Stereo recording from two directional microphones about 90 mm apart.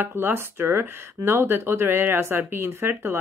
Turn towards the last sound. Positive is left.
turn(degrees=-25)  # may be behind; listen again after turning